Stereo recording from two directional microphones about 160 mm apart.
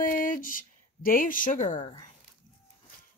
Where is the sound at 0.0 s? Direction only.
60° left (ahead or behind).